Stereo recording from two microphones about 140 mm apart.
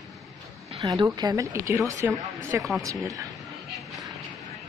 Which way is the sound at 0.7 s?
25° right (ahead or behind).